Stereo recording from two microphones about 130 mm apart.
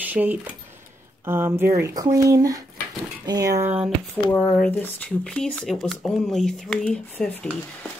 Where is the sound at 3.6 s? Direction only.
10° right (ahead or behind).